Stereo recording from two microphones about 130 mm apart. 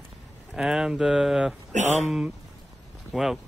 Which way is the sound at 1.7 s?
65° right (ahead or behind).